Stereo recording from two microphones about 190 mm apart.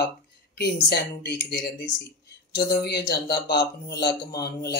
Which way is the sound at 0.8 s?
60° left (ahead or behind).